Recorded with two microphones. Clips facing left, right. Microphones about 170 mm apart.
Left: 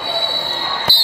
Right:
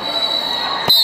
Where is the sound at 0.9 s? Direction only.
20° right (ahead or behind).